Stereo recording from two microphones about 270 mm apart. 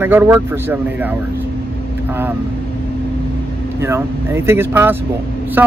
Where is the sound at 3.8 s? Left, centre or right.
Centre.